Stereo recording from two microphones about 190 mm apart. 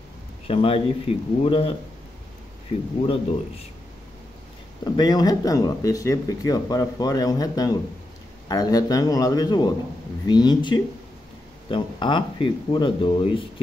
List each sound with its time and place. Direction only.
0.5 s speech: 30° left (ahead or behind)
3.0 s speech: 30° left (ahead or behind)
4.8 s speech: 20° left (ahead or behind)